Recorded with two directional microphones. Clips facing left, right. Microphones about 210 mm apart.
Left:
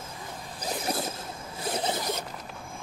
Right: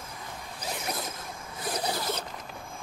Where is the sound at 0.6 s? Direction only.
35° left (ahead or behind).